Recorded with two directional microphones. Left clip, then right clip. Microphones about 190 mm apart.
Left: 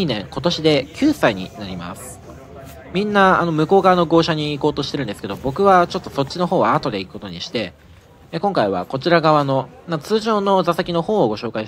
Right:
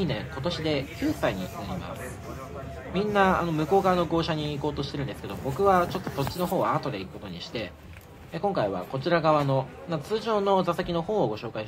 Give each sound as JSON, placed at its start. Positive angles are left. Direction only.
{"t": 0.0, "sound": "speech", "side_deg": 30}
{"t": 2.9, "sound": "speech", "side_deg": 30}